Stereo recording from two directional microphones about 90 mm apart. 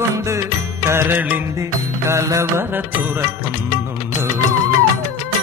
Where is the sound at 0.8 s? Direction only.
25° right (ahead or behind).